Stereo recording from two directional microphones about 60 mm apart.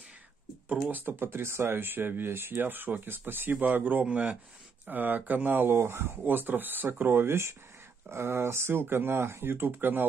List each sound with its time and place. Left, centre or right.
0.8 s speech: right